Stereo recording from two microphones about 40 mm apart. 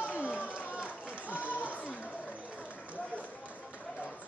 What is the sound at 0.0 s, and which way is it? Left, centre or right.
Run, left.